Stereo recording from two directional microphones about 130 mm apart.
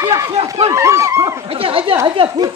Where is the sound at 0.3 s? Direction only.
45° right (ahead or behind).